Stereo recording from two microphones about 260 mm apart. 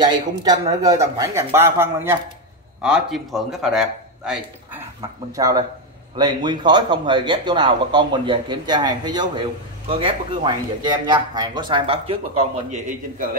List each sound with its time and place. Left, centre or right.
0.0 s a man's voice: centre
5.3 s speech: centre; by 13.4 s right